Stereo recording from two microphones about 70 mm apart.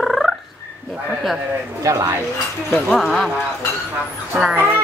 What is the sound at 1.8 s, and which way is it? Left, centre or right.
Speech, right.